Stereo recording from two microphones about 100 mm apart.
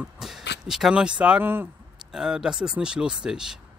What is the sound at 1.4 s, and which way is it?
Speech, 20° right (ahead or behind).